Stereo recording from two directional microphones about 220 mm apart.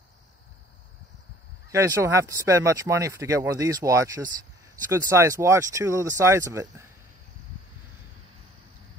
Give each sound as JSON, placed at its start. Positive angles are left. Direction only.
{"t": 1.7, "sound": "speech", "side_deg": -15}